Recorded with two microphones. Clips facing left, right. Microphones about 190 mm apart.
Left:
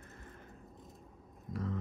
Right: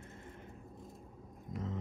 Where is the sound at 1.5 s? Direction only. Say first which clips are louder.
Left 2 dB; 20° right (ahead or behind).